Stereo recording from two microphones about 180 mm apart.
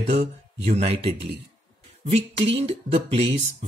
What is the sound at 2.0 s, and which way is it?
Speech, 35° right (ahead or behind).